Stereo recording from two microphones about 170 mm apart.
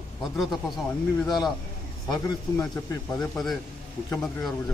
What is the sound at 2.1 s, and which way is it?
Speech, 20° left (ahead or behind).